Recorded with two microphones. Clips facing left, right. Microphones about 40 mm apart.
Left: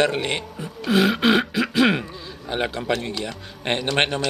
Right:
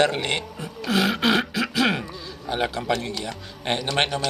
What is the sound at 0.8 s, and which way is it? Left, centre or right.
Speech, centre.